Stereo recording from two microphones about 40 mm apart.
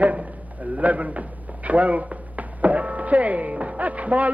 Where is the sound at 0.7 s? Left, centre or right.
Right.